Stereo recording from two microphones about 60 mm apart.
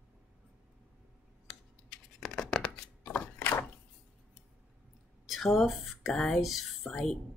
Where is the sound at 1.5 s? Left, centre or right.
Centre.